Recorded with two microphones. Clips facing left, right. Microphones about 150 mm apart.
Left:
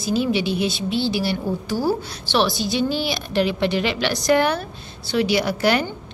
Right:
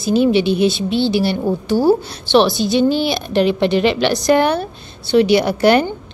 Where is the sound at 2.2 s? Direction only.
25° right (ahead or behind).